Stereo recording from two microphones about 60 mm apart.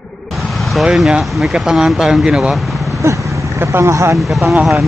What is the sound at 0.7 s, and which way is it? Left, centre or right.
Speech, centre.